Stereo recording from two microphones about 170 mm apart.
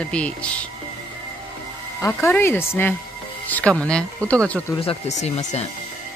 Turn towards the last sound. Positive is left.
turn(degrees=45)  # may be behind; listen again after turning